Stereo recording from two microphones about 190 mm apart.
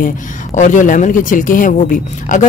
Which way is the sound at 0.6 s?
40° left (ahead or behind).